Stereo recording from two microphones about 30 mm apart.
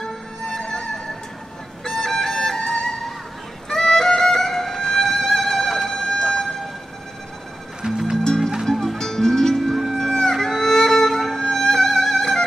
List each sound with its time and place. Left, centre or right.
0.0 s music: centre
7.8 s music: centre
8.9 s music: centre
9.6 s music: centre
9.9 s music: centre